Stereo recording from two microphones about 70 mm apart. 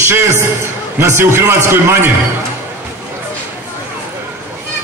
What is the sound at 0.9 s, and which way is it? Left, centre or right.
A man's voice, right.